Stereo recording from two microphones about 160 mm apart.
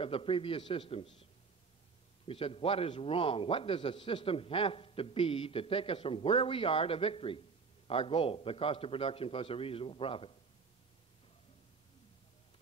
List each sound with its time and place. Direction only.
0.0 s a man's voice: 35° left (ahead or behind)